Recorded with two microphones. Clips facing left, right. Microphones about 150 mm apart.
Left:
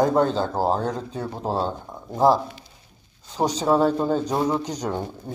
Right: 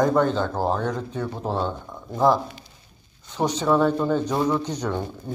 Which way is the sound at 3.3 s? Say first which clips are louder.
Left 1 dB; 35° left (ahead or behind).